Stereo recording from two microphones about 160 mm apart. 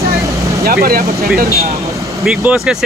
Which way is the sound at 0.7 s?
70° right (ahead or behind).